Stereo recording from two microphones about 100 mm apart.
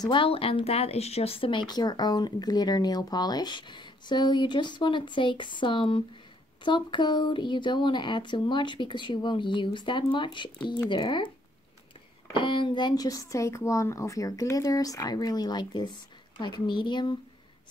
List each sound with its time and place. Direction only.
0.0 s a woman's voice: 55° left (ahead or behind)
12.3 s speech: 55° left (ahead or behind)